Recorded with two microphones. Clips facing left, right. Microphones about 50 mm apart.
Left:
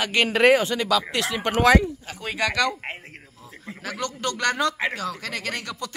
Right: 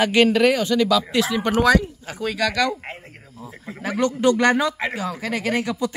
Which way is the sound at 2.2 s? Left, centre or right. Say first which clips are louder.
Right 3 dB; centre.